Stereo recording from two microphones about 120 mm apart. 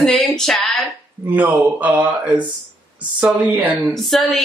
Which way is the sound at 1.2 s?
15° right (ahead or behind).